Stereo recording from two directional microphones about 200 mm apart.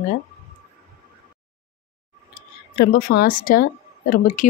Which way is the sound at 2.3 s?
45° left (ahead or behind).